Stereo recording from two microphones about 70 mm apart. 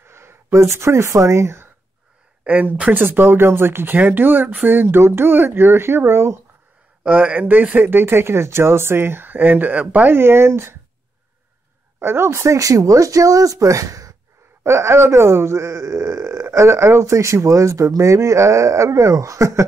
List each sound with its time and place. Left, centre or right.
0.0 s speech: right
2.4 s speech: right
7.1 s speech: right
10.1 s speech: right
12.0 s speech: right
14.6 s speech: right